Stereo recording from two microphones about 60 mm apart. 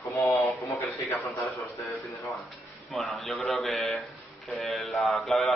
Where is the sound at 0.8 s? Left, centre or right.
Left.